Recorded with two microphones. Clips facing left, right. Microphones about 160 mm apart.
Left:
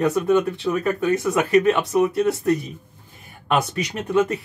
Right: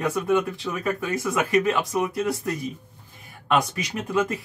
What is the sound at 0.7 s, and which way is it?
Speech, 15° left (ahead or behind).